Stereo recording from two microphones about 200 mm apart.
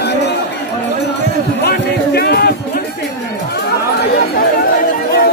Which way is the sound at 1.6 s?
55° left (ahead or behind).